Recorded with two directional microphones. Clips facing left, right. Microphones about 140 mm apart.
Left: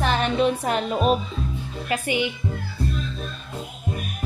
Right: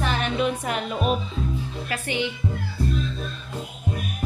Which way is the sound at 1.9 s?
10° left (ahead or behind).